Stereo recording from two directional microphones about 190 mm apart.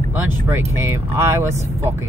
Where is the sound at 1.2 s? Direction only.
15° right (ahead or behind).